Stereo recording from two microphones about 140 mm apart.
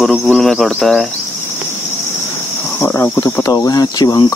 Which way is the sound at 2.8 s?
15° left (ahead or behind).